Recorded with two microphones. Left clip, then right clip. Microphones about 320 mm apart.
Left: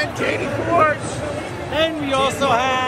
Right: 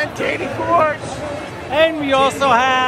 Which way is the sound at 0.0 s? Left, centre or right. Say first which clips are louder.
Right 1 dB; right.